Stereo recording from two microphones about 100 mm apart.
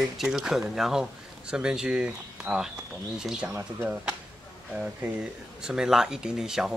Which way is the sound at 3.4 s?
20° right (ahead or behind).